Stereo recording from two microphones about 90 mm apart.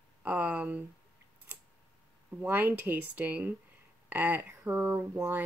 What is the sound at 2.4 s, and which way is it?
Speech, 20° right (ahead or behind).